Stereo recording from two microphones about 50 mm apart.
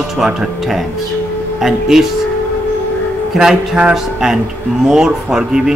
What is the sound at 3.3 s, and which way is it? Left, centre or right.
Speech, centre.